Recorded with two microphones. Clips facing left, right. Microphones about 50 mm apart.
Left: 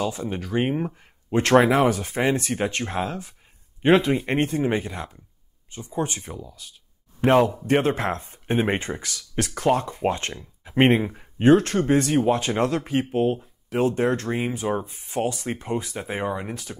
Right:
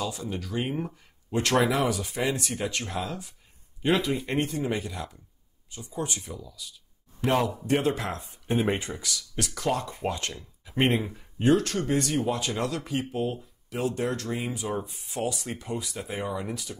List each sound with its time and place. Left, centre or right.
0.0 s a man's voice: left